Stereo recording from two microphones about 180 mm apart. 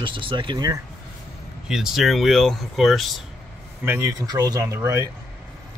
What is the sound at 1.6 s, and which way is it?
Speech, centre (ahead or behind).